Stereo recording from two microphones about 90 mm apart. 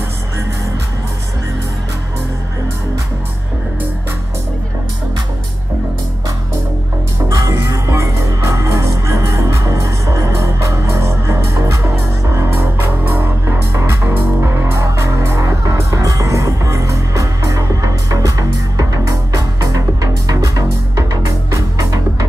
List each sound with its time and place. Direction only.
7.2 s music: 40° right (ahead or behind)